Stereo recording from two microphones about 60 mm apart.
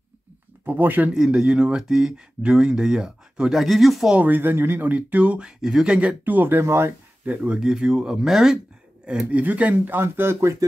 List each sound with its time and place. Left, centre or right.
0.7 s speech: right
1.1 s speech: centre
3.5 s speech: centre
4.3 s speech: right
5.6 s speech: centre
5.9 s speech: right
6.6 s speech: right
7.2 s speech: centre
9.3 s speech: right
9.9 s speech: right